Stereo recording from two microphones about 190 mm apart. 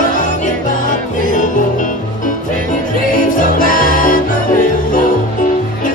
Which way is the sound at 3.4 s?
45° left (ahead or behind).